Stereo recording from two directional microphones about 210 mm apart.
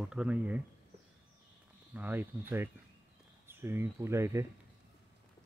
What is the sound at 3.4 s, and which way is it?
Speech, 10° right (ahead or behind).